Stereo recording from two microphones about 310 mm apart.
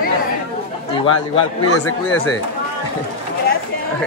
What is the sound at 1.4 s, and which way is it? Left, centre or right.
Speech, left.